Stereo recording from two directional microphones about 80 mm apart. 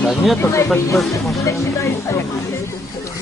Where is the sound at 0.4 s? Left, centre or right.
Left.